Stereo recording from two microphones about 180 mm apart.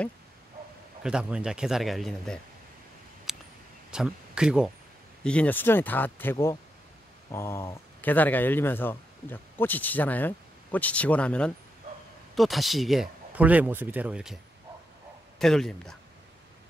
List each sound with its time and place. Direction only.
1.0 s speech: 5° right (ahead or behind)
3.3 s a sound: centre (ahead or behind)
3.9 s speech: 5° right (ahead or behind)
5.2 s speech: 5° left (ahead or behind)